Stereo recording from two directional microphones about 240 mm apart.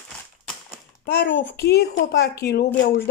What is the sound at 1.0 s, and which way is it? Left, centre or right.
A child's voice, left.